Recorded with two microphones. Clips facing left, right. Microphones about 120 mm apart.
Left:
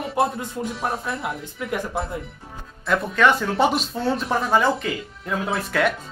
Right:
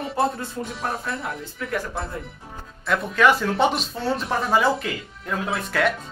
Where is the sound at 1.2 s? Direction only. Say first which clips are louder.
Left 2 dB; 20° left (ahead or behind).